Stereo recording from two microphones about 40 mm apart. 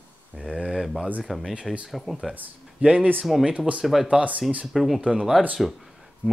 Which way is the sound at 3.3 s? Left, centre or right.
Centre.